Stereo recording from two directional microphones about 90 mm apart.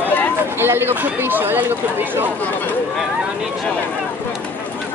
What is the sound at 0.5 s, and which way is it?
Speech, 25° right (ahead or behind).